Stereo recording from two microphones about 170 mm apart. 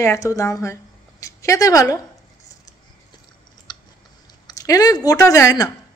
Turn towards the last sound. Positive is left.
turn(degrees=20)  # may be behind; listen again after turning